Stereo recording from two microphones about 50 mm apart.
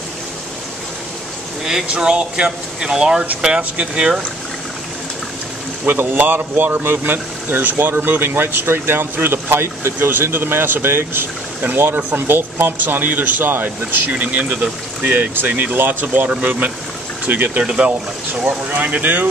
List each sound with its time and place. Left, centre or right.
1.6 s speech: centre
5.9 s speech: right
16.1 s speech: right
17.6 s speech: right